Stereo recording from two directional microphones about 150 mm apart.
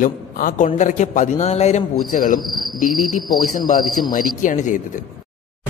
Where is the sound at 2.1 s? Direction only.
65° left (ahead or behind).